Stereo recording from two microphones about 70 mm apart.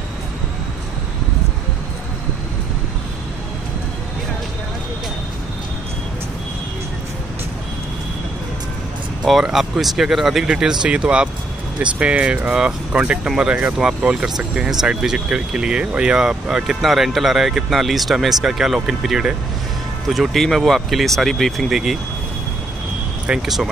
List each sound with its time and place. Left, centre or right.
9.2 s speech: centre
13.7 s speech: centre
23.4 s speech: centre